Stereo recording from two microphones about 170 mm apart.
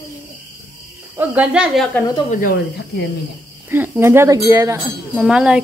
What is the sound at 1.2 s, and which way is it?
Speech, 10° right (ahead or behind).